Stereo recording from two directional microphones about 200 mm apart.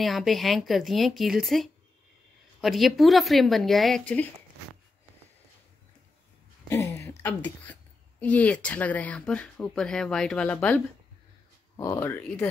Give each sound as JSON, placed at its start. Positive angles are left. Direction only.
{"t": 0.0, "sound": "speech", "side_deg": 0}
{"t": 6.7, "sound": "a sound", "side_deg": 15}
{"t": 8.2, "sound": "speech", "side_deg": 5}